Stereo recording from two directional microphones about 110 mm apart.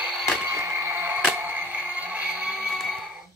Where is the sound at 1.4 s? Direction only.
15° right (ahead or behind).